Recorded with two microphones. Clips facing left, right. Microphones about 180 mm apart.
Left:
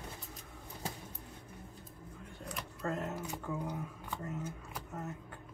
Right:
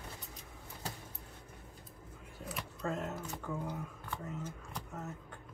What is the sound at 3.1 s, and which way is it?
Speech, 10° left (ahead or behind).